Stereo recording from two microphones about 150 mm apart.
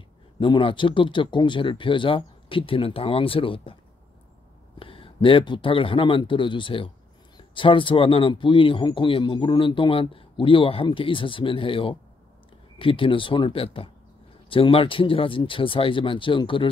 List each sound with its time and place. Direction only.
0.4 s speech: 35° left (ahead or behind)
4.7 s speech: 35° left (ahead or behind)